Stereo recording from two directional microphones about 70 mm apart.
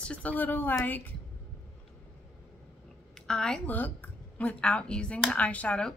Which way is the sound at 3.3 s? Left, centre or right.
Centre.